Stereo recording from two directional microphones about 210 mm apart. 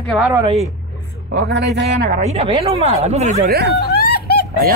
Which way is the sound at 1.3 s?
55° right (ahead or behind).